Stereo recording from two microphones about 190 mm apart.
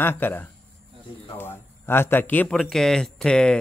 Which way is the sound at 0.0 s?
10° left (ahead or behind).